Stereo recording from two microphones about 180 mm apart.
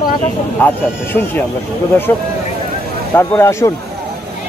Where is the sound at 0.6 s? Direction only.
10° left (ahead or behind).